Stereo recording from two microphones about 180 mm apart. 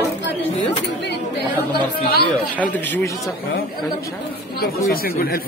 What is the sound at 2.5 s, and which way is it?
Speech, 10° left (ahead or behind).